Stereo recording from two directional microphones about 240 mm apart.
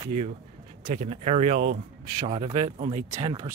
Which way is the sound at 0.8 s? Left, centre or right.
Right.